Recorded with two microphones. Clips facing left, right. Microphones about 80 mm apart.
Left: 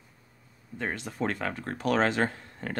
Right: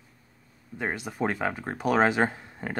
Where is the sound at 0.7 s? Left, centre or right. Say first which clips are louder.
Right 2 dB; centre.